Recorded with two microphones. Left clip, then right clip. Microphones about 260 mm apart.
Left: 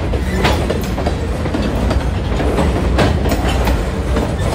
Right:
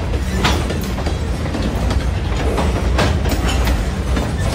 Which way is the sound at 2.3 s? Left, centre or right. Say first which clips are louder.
Left 3 dB; left.